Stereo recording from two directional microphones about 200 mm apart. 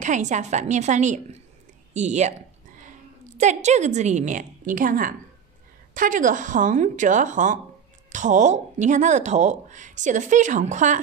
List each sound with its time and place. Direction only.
0.0 s speech: 40° right (ahead or behind)
3.3 s speech: 35° right (ahead or behind)